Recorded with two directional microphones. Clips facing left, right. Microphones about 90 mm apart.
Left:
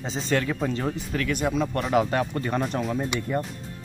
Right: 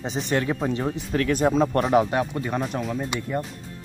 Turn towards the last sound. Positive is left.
turn(degrees=5)  # may be behind; listen again after turning